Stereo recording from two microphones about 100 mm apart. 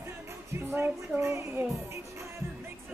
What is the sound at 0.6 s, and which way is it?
Music, 20° right (ahead or behind).